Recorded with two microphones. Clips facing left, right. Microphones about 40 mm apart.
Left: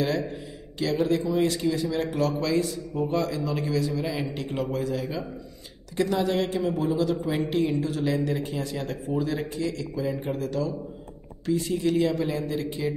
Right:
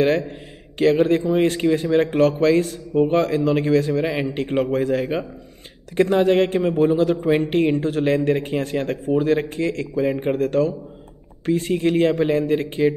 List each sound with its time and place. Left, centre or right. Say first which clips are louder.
0.7 s speech: right 8 dB; right